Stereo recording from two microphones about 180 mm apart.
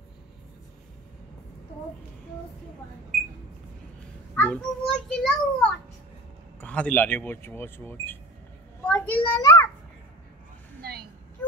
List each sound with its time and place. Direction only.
4.4 s a child's voice: 5° left (ahead or behind)
10.8 s vehicle: 60° right (ahead or behind)